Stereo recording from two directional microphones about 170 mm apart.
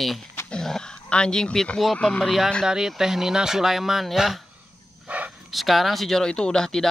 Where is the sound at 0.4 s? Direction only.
5° left (ahead or behind).